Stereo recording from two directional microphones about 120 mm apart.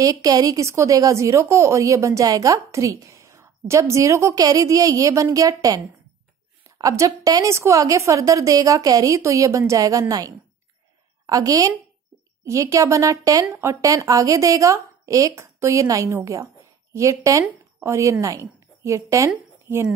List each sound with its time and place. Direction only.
0.0 s a woman's voice: 30° right (ahead or behind)
6.8 s a woman's voice: 30° right (ahead or behind)